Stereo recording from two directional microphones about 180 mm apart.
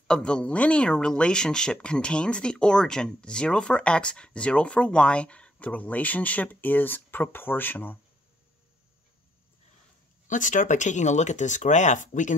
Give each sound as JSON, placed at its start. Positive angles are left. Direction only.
{"t": 0.1, "sound": "speech", "side_deg": 5}
{"t": 10.2, "sound": "speech", "side_deg": 45}